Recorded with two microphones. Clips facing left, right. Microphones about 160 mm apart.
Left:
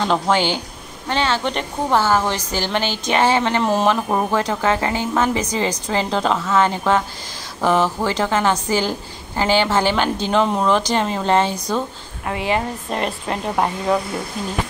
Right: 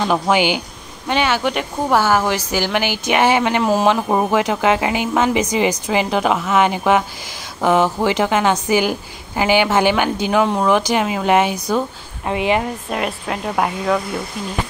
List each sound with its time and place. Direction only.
0.0 s a woman's voice: 15° right (ahead or behind)
12.9 s speech: 5° right (ahead or behind)